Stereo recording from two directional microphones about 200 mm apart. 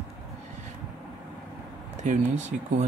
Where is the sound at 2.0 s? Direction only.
35° right (ahead or behind).